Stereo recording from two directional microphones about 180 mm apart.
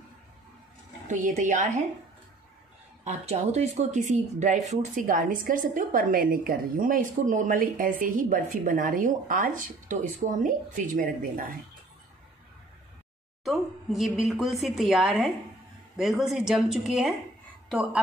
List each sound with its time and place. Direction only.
1.0 s speech: 45° right (ahead or behind)
3.0 s speech: 40° right (ahead or behind)
13.4 s a woman's voice: centre (ahead or behind)